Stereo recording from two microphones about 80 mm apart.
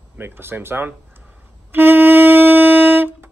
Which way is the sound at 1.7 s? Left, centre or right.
Right.